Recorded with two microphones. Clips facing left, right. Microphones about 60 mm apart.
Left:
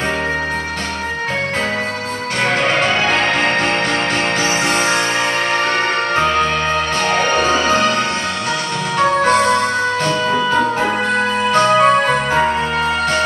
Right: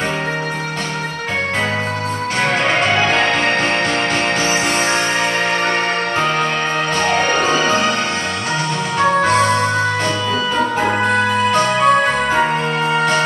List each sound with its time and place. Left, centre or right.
2.4 s music: right
7.2 s music: right
7.4 s music: centre
11.5 s music: left